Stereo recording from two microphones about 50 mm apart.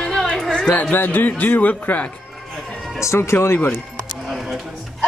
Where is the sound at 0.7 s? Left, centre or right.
Left.